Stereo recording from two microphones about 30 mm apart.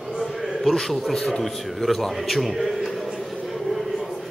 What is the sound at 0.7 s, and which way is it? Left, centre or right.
A man's voice, centre.